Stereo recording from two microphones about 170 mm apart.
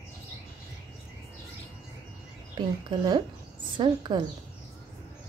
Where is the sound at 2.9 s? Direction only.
25° right (ahead or behind).